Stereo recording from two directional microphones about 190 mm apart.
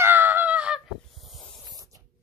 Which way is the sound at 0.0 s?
10° right (ahead or behind).